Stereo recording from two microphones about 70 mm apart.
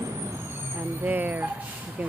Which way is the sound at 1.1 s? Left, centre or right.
Right.